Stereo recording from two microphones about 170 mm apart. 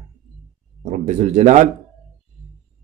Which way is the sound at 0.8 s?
45° right (ahead or behind).